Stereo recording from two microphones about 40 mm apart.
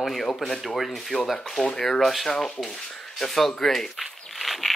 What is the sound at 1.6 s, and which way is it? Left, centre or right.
Speech, left.